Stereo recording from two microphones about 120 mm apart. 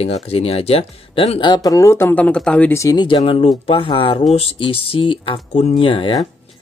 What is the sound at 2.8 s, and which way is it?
Speech, 30° left (ahead or behind).